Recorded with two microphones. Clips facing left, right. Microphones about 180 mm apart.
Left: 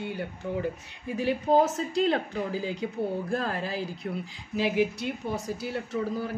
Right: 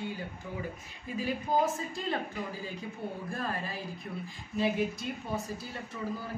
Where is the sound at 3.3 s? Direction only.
75° left (ahead or behind).